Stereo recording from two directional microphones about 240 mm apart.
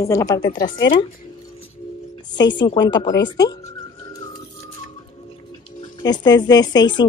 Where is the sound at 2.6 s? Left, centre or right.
Centre.